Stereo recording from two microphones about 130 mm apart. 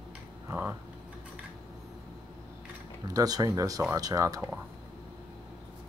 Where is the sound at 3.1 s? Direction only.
30° right (ahead or behind).